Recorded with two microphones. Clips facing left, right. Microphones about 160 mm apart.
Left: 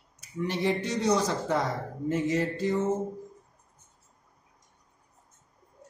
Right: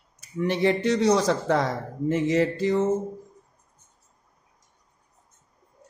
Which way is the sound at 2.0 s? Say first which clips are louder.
Right 5 dB; 90° right.